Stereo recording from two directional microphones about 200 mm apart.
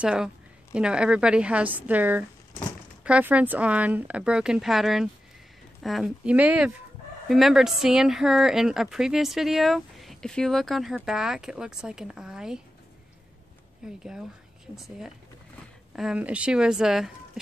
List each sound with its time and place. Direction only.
0.0 s speech: 5° right (ahead or behind)
13.8 s speech: 5° right (ahead or behind)